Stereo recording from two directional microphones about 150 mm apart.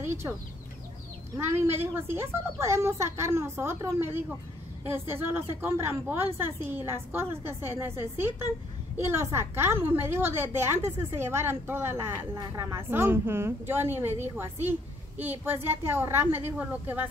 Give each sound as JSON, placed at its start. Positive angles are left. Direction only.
{"t": 0.0, "sound": "speech", "side_deg": -20}
{"t": 1.3, "sound": "a woman's voice", "side_deg": -15}